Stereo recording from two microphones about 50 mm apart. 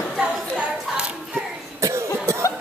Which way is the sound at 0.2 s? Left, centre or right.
Centre.